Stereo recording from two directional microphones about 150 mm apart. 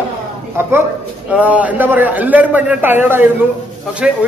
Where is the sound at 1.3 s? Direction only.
10° right (ahead or behind).